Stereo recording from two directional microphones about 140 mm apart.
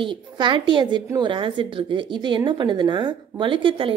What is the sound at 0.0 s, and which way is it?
A woman's voice, 35° right (ahead or behind).